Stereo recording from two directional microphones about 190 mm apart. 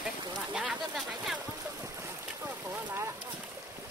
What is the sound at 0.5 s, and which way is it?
Speech, centre (ahead or behind).